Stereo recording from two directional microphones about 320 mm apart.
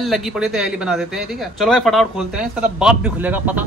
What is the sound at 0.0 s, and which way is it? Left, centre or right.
Speech, centre.